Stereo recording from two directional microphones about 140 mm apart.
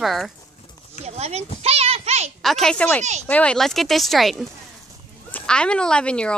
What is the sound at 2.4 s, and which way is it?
A woman's voice, centre (ahead or behind).